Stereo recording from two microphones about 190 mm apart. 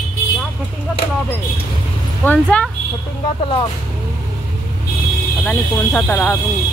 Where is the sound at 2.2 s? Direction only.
5° left (ahead or behind).